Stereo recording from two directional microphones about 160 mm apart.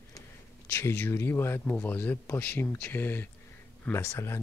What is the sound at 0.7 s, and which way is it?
Speech, 10° left (ahead or behind).